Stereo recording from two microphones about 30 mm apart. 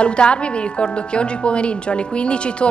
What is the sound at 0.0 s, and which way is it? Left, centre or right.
A woman's voice, left.